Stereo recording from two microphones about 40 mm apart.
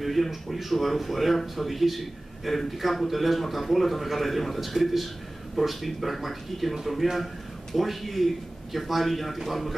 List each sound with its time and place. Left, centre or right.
0.0 s a man's voice: centre